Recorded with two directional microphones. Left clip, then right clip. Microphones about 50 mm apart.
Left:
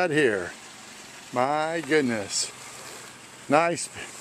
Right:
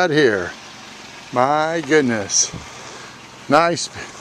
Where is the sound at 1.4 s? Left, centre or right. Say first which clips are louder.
Right 8 dB; right.